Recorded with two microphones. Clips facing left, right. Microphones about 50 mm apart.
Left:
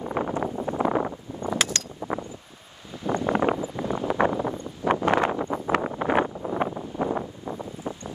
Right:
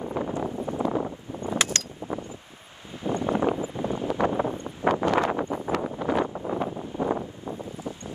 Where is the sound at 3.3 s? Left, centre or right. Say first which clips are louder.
Left 1 dB; left.